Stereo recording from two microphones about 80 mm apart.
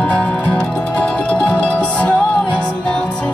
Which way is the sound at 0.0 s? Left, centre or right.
Centre.